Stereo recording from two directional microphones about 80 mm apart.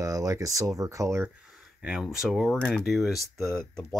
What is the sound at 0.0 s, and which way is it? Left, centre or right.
Speech, right.